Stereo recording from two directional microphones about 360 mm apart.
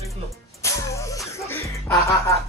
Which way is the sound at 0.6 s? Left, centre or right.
Centre.